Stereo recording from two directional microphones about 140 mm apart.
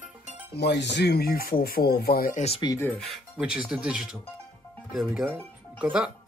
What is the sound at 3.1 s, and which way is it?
Speech, 5° right (ahead or behind).